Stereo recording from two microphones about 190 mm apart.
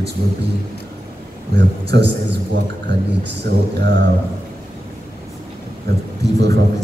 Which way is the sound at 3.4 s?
60° right (ahead or behind).